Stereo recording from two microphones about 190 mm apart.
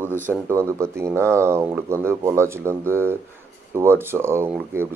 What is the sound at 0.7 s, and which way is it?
Speech, 15° right (ahead or behind).